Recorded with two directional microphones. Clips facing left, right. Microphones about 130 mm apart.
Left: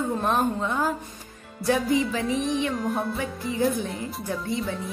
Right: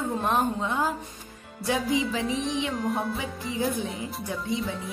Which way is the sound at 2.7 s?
Centre (ahead or behind).